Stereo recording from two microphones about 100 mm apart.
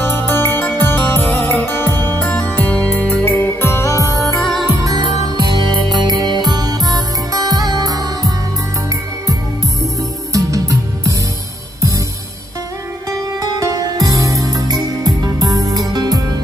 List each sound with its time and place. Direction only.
0.0 s music: 20° left (ahead or behind)
4.4 s music: 5° left (ahead or behind)
5.4 s music: 50° right (ahead or behind)
10.3 s music: 35° right (ahead or behind)
13.1 s music: 35° right (ahead or behind)